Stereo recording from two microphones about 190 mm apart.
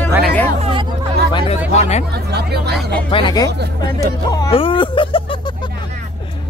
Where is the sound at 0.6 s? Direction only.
30° right (ahead or behind).